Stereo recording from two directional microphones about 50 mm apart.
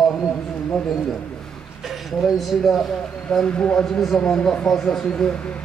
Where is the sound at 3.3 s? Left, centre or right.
Left.